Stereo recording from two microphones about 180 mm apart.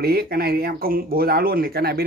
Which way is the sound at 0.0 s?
60° right (ahead or behind).